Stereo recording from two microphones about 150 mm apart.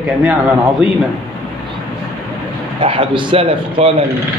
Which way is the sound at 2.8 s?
35° right (ahead or behind).